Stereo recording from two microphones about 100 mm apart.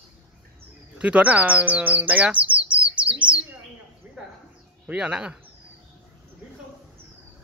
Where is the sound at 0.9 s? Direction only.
15° right (ahead or behind).